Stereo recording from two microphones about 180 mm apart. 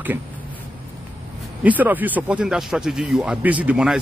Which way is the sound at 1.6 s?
10° right (ahead or behind).